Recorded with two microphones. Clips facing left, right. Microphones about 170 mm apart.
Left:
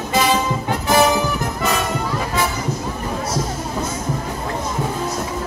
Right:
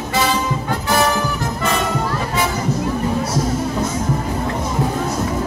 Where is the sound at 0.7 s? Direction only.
15° left (ahead or behind).